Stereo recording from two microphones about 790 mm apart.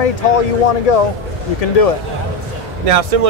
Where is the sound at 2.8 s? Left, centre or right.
Right.